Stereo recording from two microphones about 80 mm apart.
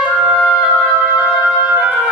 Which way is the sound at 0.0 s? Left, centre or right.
Centre.